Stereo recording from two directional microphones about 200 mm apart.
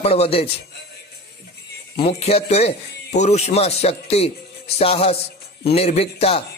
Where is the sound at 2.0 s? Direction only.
30° left (ahead or behind).